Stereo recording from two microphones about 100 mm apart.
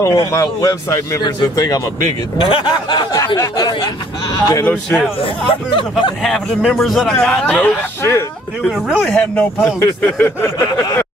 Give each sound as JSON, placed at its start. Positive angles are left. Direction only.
{"t": 0.0, "sound": "speech", "side_deg": 35}
{"t": 2.5, "sound": "a sound", "side_deg": 50}
{"t": 3.3, "sound": "speech", "side_deg": 35}
{"t": 5.2, "sound": "speech", "side_deg": 60}
{"t": 6.2, "sound": "a man's voice", "side_deg": 0}
{"t": 8.0, "sound": "speech", "side_deg": 25}
{"t": 8.6, "sound": "speech", "side_deg": -5}
{"t": 9.0, "sound": "speech", "side_deg": 10}